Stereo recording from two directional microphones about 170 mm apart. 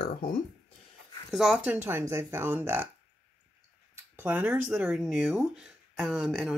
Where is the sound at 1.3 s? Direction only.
5° right (ahead or behind).